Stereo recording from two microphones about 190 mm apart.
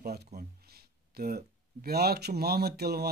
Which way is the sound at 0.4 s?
55° right (ahead or behind).